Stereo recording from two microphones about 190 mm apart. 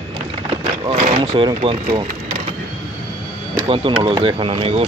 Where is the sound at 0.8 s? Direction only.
30° right (ahead or behind).